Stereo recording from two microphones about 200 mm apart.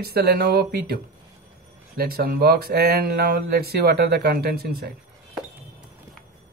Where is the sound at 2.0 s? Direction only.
50° right (ahead or behind).